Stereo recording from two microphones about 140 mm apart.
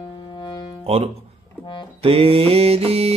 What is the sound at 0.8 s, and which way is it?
Mantra, 45° right (ahead or behind).